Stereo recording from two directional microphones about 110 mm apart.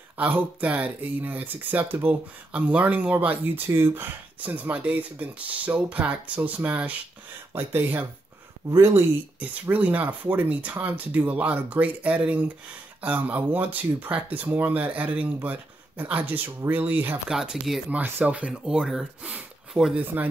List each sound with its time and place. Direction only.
0.2 s speech: 15° right (ahead or behind)
9.4 s speech: 15° right (ahead or behind)
17.3 s speech: 5° right (ahead or behind)
17.8 s speech: 15° right (ahead or behind)